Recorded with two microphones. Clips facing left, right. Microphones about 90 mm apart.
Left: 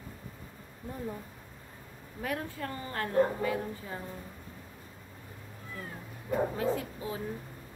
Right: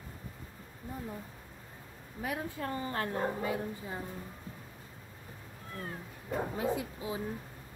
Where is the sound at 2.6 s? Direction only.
25° right (ahead or behind).